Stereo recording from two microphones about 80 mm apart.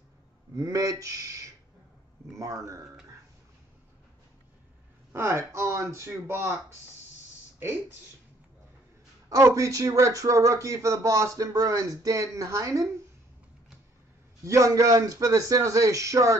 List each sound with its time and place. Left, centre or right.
0.6 s speech: right
5.1 s speech: right
7.5 s speech: right
9.3 s speech: right
14.4 s a man's voice: right
14.7 s speech: right